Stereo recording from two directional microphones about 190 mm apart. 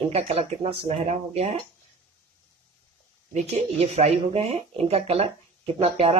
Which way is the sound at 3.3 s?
35° right (ahead or behind).